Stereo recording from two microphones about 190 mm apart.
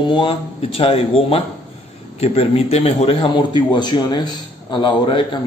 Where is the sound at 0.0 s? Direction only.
25° left (ahead or behind).